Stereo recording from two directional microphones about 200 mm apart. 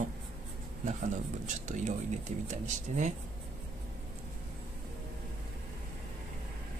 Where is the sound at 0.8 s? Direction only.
40° right (ahead or behind).